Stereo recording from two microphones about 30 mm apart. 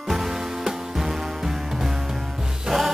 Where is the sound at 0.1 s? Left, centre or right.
Centre.